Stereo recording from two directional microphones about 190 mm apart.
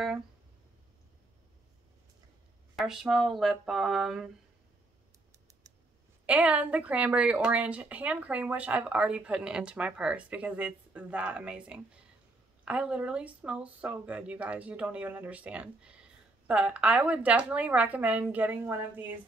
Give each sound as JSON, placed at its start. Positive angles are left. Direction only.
{"t": 2.7, "sound": "speech", "side_deg": 0}
{"t": 6.2, "sound": "speech", "side_deg": -5}